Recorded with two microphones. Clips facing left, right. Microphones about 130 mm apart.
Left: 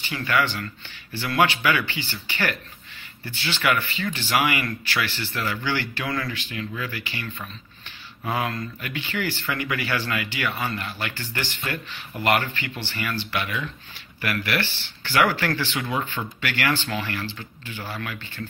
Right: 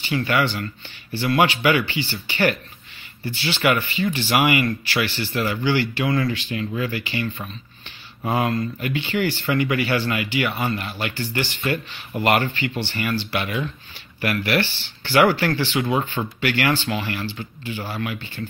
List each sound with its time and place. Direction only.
0.1 s speech: 20° right (ahead or behind)
5.2 s speech: 15° right (ahead or behind)